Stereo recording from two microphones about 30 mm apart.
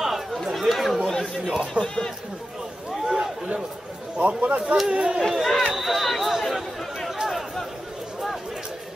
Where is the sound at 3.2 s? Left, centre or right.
Right.